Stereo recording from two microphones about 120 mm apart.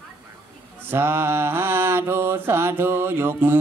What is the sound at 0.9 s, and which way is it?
A man's voice, 20° right (ahead or behind).